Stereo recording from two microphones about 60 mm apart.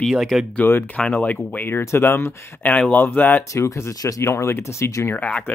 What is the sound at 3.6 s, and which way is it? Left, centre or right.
Speech, left.